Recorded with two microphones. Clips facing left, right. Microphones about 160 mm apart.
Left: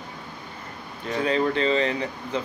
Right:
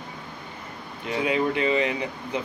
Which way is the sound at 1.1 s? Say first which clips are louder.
Left 1 dB; 10° right (ahead or behind).